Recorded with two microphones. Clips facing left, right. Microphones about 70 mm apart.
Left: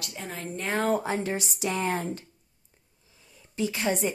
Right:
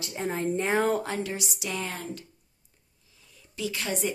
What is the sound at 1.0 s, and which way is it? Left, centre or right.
Speech, left.